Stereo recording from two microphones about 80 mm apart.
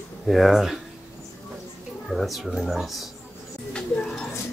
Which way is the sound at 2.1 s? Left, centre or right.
Centre.